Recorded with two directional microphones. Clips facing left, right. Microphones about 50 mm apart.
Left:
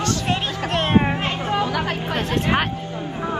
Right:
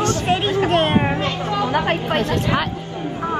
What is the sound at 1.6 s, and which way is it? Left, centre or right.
Speech, right.